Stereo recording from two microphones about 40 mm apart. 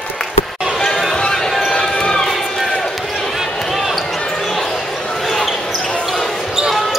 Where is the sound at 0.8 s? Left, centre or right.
Centre.